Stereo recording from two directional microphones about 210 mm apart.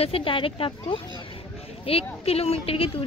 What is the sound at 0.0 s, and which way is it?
A woman's voice, 25° left (ahead or behind).